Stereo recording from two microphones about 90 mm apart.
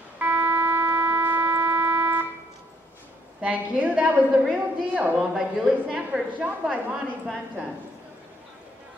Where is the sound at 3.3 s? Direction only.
15° right (ahead or behind).